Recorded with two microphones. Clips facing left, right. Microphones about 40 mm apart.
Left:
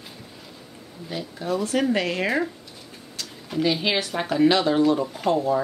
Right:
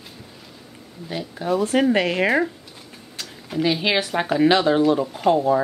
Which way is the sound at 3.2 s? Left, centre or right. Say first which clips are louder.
Right 1 dB; right.